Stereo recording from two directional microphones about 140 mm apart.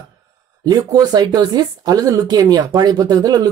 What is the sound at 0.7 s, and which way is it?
Speech, 25° right (ahead or behind).